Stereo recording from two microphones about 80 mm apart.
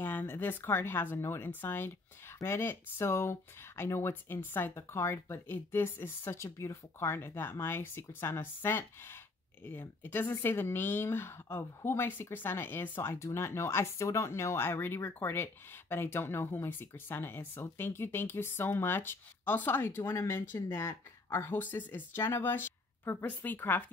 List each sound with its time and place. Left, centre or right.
0.0 s a woman's voice: left